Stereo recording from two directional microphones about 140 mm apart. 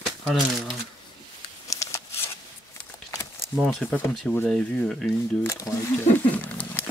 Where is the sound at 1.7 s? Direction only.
20° left (ahead or behind).